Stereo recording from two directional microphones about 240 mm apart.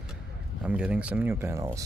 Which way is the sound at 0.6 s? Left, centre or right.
Centre.